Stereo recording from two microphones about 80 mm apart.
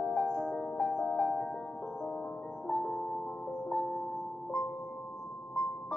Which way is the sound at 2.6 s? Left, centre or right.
Centre.